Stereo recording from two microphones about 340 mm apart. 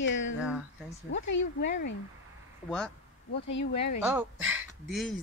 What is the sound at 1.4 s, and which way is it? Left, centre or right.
Speech, left.